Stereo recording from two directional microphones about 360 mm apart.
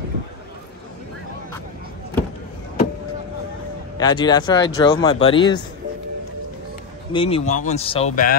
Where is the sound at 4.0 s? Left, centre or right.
Centre.